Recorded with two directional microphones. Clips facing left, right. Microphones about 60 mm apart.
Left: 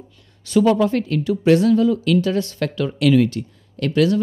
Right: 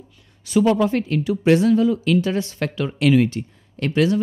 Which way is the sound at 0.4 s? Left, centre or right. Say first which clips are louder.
Left 1 dB; centre.